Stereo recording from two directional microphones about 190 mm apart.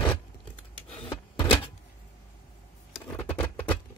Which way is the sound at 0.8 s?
30° left (ahead or behind).